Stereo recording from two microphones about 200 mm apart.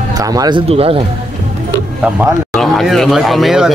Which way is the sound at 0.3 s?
20° right (ahead or behind).